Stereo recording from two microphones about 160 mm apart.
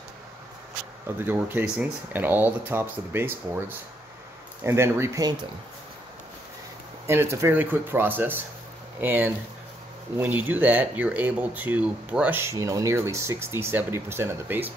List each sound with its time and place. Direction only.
1.0 s speech: 10° right (ahead or behind)
7.1 s speech: 15° right (ahead or behind)